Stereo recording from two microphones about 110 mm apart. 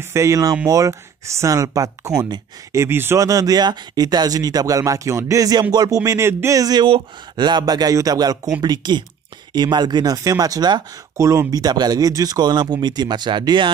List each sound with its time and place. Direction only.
0.0 s speech: 25° right (ahead or behind)
11.1 s speech: 25° right (ahead or behind); by 13.7 s 45° right (ahead or behind)